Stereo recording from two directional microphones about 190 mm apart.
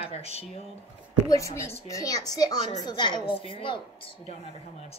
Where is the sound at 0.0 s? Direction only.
30° left (ahead or behind).